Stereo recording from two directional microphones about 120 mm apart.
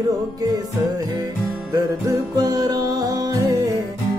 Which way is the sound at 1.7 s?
30° right (ahead or behind).